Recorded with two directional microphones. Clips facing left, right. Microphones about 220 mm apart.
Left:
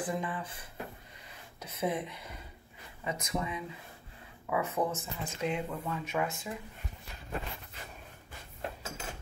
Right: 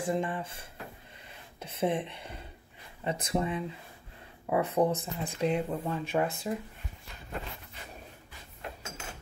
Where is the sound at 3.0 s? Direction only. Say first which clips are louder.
Right 4 dB; 30° right (ahead or behind).